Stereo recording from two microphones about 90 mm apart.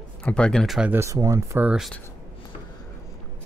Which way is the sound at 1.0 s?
35° right (ahead or behind).